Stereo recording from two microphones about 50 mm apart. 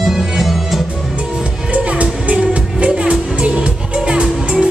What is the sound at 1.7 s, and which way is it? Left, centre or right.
Music, right.